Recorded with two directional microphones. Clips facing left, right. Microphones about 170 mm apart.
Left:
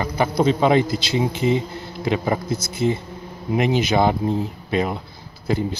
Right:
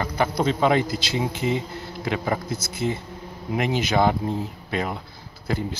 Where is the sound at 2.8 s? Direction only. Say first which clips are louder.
Left 5 dB; 25° left (ahead or behind).